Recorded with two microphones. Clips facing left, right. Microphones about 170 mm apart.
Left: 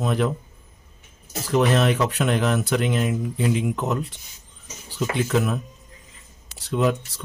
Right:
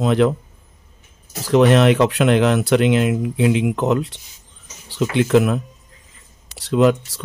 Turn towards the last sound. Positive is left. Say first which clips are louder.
# right 7 dB
turn(degrees=-85)